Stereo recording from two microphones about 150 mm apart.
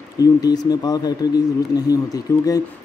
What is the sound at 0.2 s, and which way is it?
Speech, 25° left (ahead or behind).